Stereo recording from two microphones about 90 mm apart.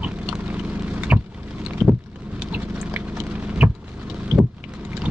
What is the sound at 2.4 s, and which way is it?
Clip-clop, 15° right (ahead or behind).